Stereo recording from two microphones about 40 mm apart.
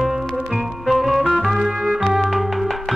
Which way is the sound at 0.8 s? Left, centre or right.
Centre.